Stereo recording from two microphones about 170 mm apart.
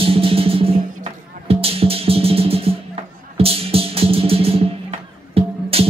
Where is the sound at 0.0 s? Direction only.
35° right (ahead or behind).